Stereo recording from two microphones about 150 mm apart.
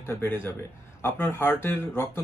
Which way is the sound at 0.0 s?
15° left (ahead or behind).